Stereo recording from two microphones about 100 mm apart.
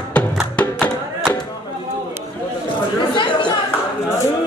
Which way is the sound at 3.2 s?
50° left (ahead or behind).